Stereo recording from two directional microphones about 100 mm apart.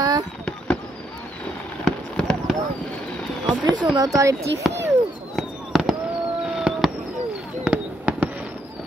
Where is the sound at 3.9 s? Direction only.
35° right (ahead or behind).